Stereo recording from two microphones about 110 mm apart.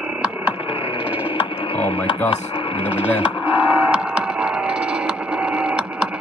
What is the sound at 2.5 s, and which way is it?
Radio, 55° left (ahead or behind).